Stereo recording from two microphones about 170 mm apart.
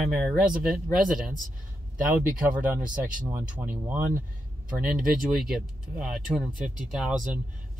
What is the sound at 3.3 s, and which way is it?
Speech, 10° right (ahead or behind).